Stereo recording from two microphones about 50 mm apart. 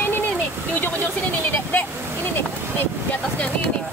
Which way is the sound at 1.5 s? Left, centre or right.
Left.